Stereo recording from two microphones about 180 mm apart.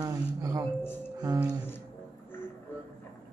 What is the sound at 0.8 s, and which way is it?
Speech, 10° left (ahead or behind).